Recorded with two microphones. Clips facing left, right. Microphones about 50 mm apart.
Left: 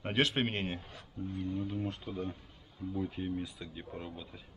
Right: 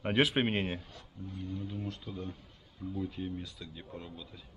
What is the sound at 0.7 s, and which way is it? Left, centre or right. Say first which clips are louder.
Speech: left 3 dB; left.